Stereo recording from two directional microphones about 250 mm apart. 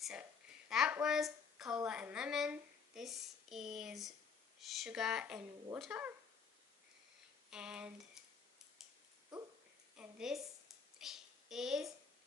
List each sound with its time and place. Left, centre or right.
0.7 s speech: centre
7.5 s speech: centre
9.9 s a woman's voice: centre
11.0 s a sound: centre